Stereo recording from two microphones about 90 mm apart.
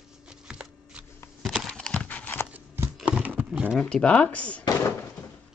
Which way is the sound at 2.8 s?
25° right (ahead or behind).